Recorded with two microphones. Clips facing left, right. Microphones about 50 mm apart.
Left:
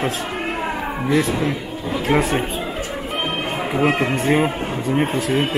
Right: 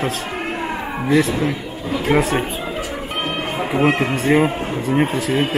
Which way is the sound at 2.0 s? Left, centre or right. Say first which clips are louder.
Right 1 dB; centre.